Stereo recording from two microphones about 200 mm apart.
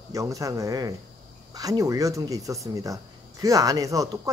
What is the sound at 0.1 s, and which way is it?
Speech, 15° right (ahead or behind).